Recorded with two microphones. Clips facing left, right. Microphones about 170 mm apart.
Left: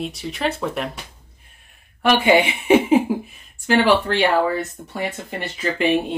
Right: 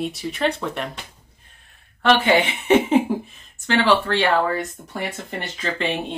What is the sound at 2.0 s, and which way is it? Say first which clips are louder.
Speech: left 1 dB; 10° left (ahead or behind).